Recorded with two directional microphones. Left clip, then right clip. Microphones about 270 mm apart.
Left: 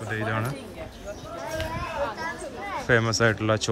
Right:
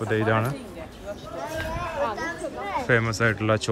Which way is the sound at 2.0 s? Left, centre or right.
Right.